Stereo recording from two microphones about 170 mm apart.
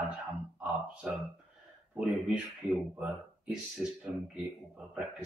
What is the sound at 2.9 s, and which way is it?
Speech, 5° right (ahead or behind).